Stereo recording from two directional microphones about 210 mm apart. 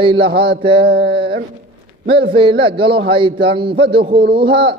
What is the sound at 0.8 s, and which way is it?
Speech, 50° right (ahead or behind).